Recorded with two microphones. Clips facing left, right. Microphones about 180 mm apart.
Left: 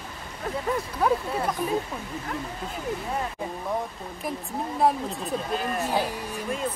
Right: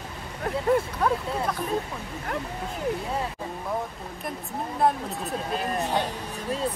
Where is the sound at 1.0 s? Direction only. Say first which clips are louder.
Left 5 dB; 10° left (ahead or behind).